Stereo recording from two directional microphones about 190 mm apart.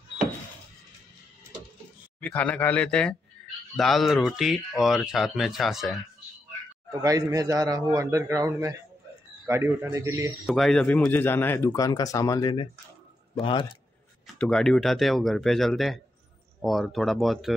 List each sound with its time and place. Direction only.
2.1 s speech: 5° left (ahead or behind)
6.9 s a man's voice: 20° right (ahead or behind)
10.4 s speech: centre (ahead or behind); by 13.7 s 25° left (ahead or behind)
14.2 s speech: 5° left (ahead or behind)